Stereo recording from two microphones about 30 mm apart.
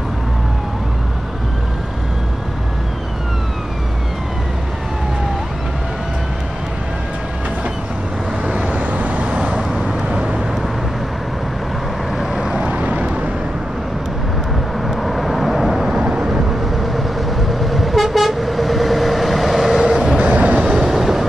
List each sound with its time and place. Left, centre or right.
8.5 s vehicle: right
8.7 s vehicle: right
9.3 s vehicle: right
12.5 s vehicle: right
14.9 s vehicle: centre
15.9 s vehicle: right
17.6 s vehicle: centre
20.2 s train: right
20.7 s train: centre